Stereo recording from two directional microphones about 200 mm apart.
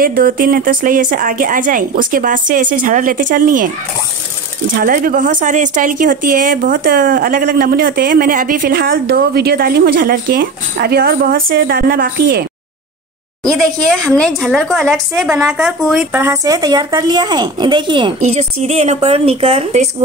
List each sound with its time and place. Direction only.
0.0 s speech: 45° right (ahead or behind)
4.8 s speech: 45° right (ahead or behind)
13.5 s a woman's voice: centre (ahead or behind); by 19.9 s 30° right (ahead or behind)